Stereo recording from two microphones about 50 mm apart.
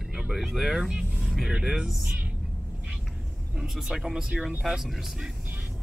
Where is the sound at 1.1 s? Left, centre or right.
Centre.